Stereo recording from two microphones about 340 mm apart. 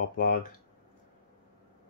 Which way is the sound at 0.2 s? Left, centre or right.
Left.